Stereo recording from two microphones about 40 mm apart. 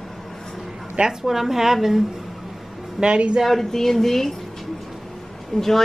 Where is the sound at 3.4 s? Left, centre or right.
Centre.